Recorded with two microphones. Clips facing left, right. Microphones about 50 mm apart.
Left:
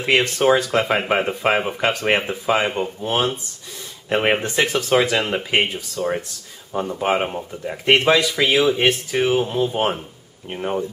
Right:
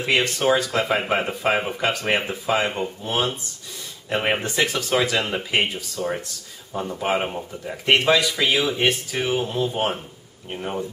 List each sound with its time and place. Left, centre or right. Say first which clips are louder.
0.0 s speech: left 3 dB; left
1.7 s speech: left 3 dB; left
4.1 s speech: left 4 dB; left
4.4 s speech: left 3 dB; centre